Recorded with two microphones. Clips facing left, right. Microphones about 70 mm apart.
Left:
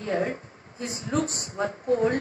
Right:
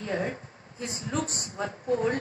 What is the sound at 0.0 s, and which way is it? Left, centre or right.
A woman's voice, left.